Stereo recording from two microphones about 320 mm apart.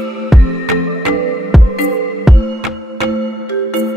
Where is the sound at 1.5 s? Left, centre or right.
Centre.